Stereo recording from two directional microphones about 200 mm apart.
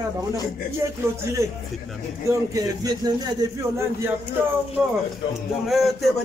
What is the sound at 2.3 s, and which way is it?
A man's voice, 15° right (ahead or behind).